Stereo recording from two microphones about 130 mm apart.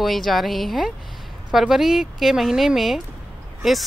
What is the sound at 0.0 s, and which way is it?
A woman's voice, centre (ahead or behind).